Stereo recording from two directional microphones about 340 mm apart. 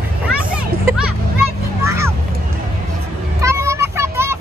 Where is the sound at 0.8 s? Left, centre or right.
Centre.